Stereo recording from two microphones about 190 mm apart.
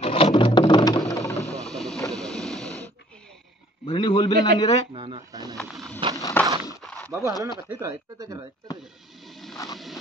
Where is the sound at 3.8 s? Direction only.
30° left (ahead or behind).